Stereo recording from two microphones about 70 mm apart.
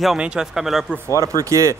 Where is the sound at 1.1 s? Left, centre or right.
Right.